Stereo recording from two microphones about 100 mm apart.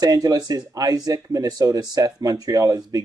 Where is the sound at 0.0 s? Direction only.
40° right (ahead or behind).